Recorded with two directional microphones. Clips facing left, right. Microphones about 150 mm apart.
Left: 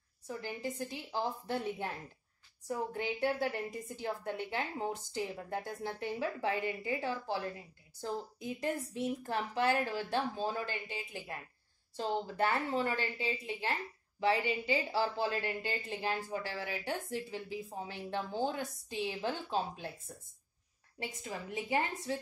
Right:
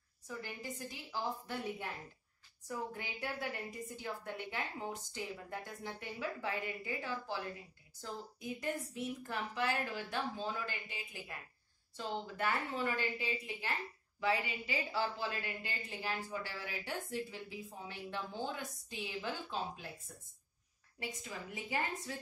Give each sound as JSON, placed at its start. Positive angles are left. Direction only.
{"t": 0.4, "sound": "a woman's voice", "side_deg": 30}
{"t": 12.4, "sound": "a woman's voice", "side_deg": 30}
{"t": 21.0, "sound": "a woman's voice", "side_deg": 25}